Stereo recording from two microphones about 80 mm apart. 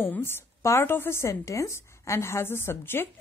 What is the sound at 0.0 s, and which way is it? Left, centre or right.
A woman's voice, left.